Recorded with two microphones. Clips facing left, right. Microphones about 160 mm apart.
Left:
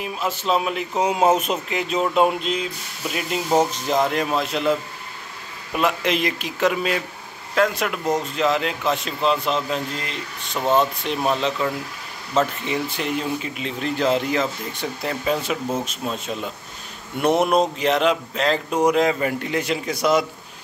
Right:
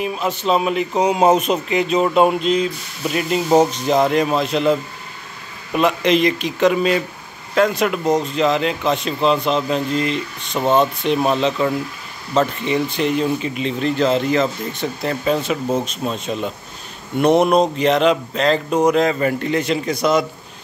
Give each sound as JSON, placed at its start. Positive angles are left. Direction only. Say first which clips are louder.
{"t": 0.0, "sound": "speech", "louder": "right 5 dB", "side_deg": 5}
{"t": 5.8, "sound": "speech", "louder": "right 6 dB", "side_deg": 5}
{"t": 10.6, "sound": "speech", "louder": "right 3 dB", "side_deg": -20}
{"t": 11.1, "sound": "speech", "louder": "right 5 dB", "side_deg": 0}
{"t": 17.2, "sound": "speech", "louder": "right 4 dB", "side_deg": 5}